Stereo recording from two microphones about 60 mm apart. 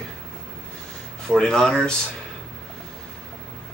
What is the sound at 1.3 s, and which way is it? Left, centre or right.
Speech, centre.